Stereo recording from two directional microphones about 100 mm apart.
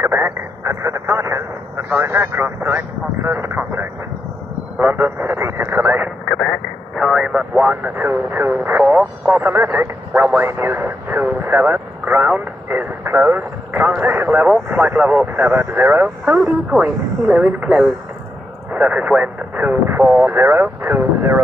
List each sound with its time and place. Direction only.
0.0 s speech: 25° right (ahead or behind)
5.8 s radio: 15° right (ahead or behind)
6.2 s radio: 5° left (ahead or behind)
7.0 s speech: 5° right (ahead or behind)
18.7 s speech: 15° right (ahead or behind)